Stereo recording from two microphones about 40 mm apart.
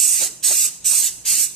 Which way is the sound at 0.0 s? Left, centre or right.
Centre.